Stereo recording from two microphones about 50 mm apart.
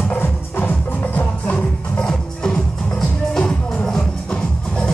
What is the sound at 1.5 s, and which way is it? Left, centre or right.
Music, centre.